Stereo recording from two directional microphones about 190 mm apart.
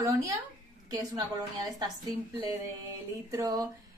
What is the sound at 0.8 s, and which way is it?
A woman's voice, 20° right (ahead or behind).